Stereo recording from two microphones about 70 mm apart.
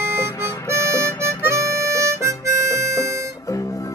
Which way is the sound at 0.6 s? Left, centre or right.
Right.